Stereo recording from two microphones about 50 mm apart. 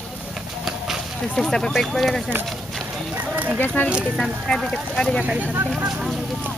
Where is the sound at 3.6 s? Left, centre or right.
Left.